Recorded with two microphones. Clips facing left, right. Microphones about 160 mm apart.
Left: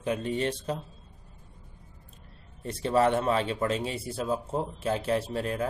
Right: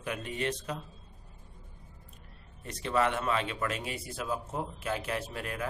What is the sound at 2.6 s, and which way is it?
Speech, 30° left (ahead or behind).